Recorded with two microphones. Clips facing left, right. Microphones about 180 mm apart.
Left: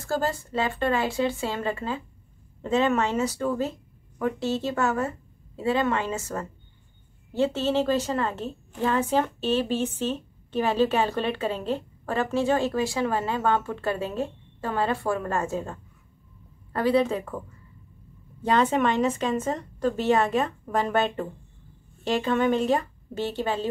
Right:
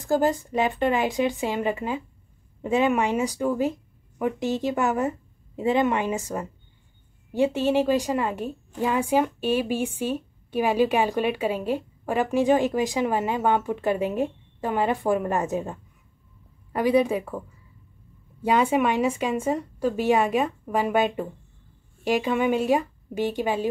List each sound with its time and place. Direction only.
0.0 s a woman's voice: 15° right (ahead or behind)
18.4 s a woman's voice: 10° right (ahead or behind)